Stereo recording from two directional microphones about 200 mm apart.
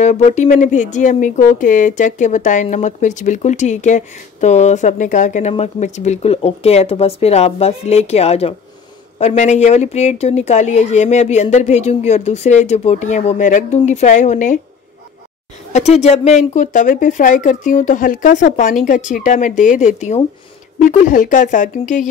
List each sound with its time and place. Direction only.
0.0 s speech: 35° left (ahead or behind)
15.7 s speech: 30° left (ahead or behind)